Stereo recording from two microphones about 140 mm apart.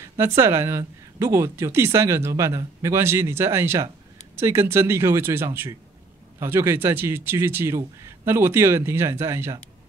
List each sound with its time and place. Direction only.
0.0 s a man's voice: 15° right (ahead or behind)